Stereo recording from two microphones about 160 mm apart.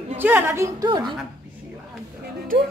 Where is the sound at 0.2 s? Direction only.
15° right (ahead or behind).